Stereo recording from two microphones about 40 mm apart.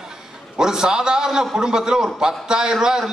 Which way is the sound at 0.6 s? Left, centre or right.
Centre.